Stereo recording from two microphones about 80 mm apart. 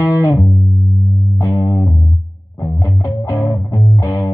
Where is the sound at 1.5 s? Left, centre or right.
Left.